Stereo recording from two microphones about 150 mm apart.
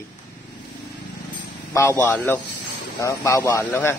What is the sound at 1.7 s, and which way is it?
Speech, 15° left (ahead or behind).